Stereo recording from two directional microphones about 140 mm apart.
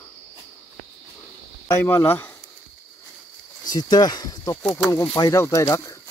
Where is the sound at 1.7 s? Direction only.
20° left (ahead or behind).